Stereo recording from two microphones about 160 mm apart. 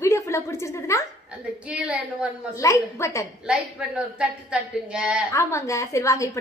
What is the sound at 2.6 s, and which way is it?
Speech, 20° left (ahead or behind).